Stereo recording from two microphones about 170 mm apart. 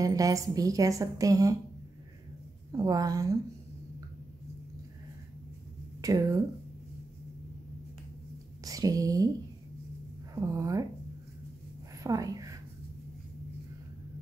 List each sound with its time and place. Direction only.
0.0 s a woman's voice: 20° right (ahead or behind)
2.8 s a woman's voice: 20° right (ahead or behind)
5.9 s speech: 20° right (ahead or behind)
8.6 s speech: 20° right (ahead or behind)
10.3 s a woman's voice: 20° right (ahead or behind)
12.0 s speech: 20° right (ahead or behind)